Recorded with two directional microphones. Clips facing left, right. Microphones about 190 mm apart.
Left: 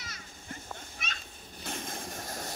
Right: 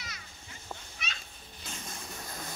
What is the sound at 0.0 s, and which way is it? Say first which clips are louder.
Children playing: left 1 dB; 50° left (ahead or behind).